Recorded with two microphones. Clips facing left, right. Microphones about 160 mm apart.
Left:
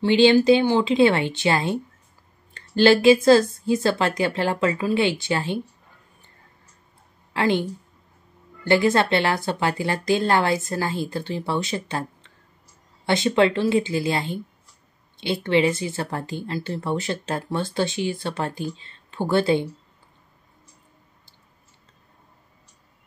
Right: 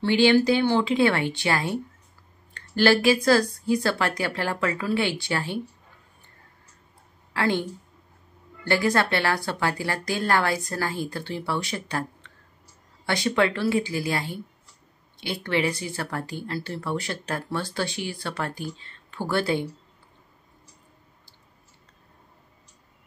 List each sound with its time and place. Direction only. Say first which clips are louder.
0.0 s speech: left 3 dB; 20° left (ahead or behind)
7.3 s a woman's voice: left 3 dB; 15° left (ahead or behind)
8.6 s speech: left 4 dB; 20° left (ahead or behind)